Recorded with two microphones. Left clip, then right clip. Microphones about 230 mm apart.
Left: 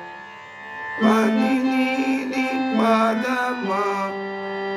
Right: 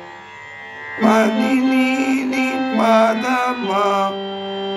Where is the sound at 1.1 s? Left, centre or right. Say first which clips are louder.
Right 4 dB; right.